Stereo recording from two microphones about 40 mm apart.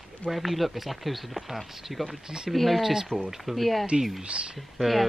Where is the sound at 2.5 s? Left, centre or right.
Centre.